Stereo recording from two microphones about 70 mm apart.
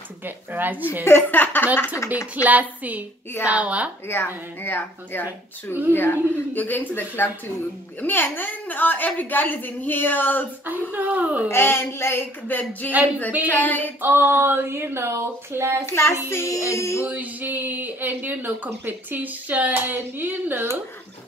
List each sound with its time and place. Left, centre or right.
0.2 s speech: right
1.0 s a woman's voice: left
2.0 s music: left
2.3 s speech: right
4.1 s a woman's voice: left
10.6 s speech: right
11.4 s a woman's voice: left
14.0 s speech: right
15.8 s speech: left
16.3 s music: left
17.0 s speech: right